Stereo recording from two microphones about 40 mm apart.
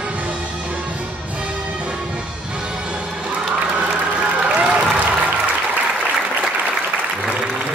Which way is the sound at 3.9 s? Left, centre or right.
Right.